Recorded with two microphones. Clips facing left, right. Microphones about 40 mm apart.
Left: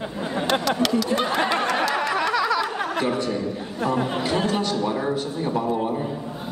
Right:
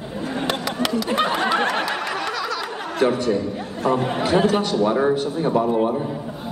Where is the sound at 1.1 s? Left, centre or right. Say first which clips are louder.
Right 2 dB; right.